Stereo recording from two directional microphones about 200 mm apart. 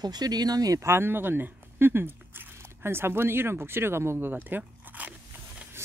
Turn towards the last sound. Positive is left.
turn(degrees=-10)  # may be behind; listen again after turning